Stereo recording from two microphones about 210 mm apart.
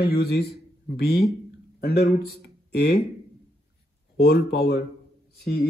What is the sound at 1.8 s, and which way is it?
Speech, 50° left (ahead or behind).